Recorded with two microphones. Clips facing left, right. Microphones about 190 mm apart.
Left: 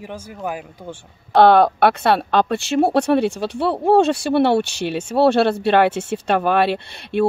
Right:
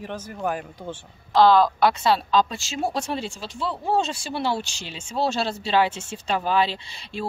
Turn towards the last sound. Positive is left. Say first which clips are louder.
# left 12 dB
turn(degrees=60)  # may be behind; listen again after turning